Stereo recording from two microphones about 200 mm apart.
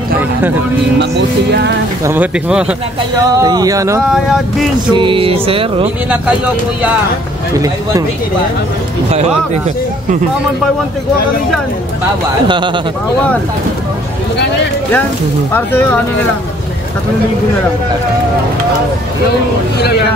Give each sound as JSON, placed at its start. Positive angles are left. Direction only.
{"t": 0.9, "sound": "speech", "side_deg": -60}
{"t": 2.0, "sound": "speech", "side_deg": -5}
{"t": 3.2, "sound": "speech", "side_deg": -20}
{"t": 4.1, "sound": "speech", "side_deg": 0}
{"t": 4.9, "sound": "speech", "side_deg": -25}
{"t": 7.5, "sound": "speech", "side_deg": -15}
{"t": 12.4, "sound": "speech", "side_deg": -25}
{"t": 15.5, "sound": "speech", "side_deg": 10}